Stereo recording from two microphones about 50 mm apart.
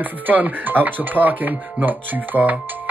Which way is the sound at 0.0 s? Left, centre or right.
Right.